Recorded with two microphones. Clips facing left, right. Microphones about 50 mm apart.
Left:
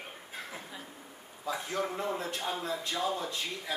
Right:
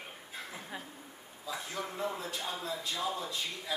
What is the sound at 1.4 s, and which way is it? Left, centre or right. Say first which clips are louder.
Speech: left 5 dB; left.